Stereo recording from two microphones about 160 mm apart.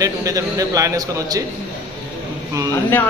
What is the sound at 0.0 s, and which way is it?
A man's voice, 20° right (ahead or behind).